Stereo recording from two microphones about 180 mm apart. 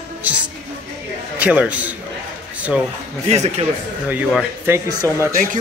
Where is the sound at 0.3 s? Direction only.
10° right (ahead or behind).